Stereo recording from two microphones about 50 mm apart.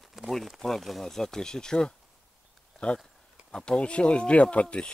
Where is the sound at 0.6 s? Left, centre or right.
Centre.